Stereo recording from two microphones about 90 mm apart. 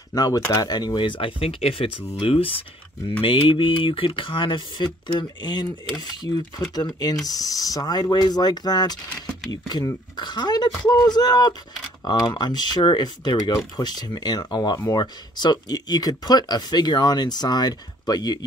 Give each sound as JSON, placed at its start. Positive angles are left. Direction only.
{"t": 0.1, "sound": "speech", "side_deg": 45}
{"t": 3.1, "sound": "speech", "side_deg": 70}